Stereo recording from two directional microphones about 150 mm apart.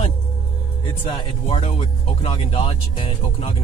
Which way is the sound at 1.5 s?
45° left (ahead or behind).